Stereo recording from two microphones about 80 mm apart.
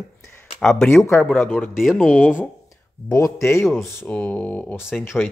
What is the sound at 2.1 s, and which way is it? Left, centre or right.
Speech, centre.